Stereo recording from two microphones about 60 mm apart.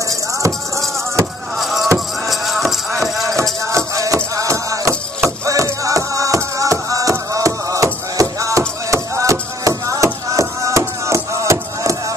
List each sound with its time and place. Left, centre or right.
0.4 s a sound: right
1.6 s music: centre
3.7 s music: right